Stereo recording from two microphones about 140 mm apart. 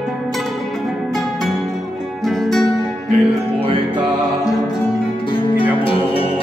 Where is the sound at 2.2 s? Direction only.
Centre (ahead or behind).